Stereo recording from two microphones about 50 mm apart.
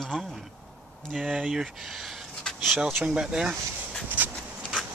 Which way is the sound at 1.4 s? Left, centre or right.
Centre.